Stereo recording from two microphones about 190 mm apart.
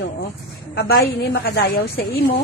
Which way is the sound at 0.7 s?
55° left (ahead or behind).